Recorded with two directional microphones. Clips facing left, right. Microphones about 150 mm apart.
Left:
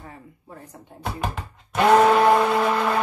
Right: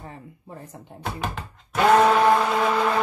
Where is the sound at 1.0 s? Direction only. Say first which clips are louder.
Left 1 dB; centre (ahead or behind).